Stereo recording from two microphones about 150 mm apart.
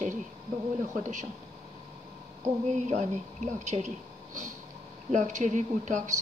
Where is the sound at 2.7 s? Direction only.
50° right (ahead or behind).